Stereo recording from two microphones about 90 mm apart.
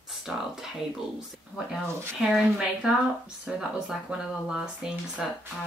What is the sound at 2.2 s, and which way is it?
A woman's voice, 5° right (ahead or behind).